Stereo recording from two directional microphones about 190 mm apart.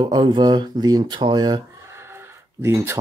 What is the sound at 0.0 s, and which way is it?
Speech, 25° right (ahead or behind).